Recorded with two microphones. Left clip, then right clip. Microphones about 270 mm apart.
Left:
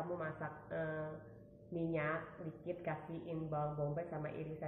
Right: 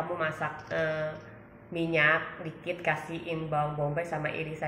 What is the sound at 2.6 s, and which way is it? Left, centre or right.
A woman's voice, centre.